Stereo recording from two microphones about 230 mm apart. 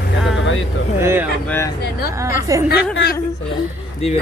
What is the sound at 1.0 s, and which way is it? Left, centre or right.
Speech, centre.